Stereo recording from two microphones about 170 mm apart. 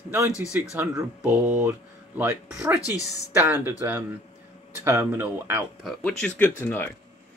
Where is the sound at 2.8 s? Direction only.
20° left (ahead or behind).